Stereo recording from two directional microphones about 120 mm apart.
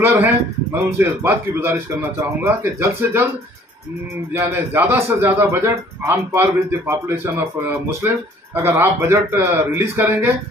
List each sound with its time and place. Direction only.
0.0 s a man's voice: 15° right (ahead or behind)
4.3 s a man's voice: 20° right (ahead or behind)